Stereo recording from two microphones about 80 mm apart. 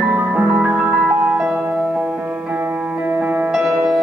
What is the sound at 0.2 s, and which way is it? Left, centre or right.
Music, centre.